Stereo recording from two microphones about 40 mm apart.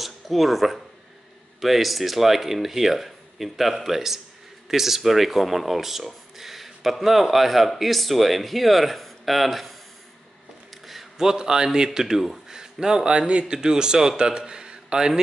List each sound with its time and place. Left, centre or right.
0.0 s speech: centre
10.9 s a sound: centre
11.3 s a man's voice: centre